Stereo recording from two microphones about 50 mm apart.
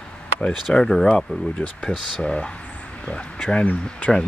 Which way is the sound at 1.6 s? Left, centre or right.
Left.